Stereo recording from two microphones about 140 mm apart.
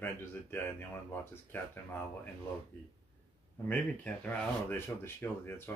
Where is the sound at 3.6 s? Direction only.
10° left (ahead or behind).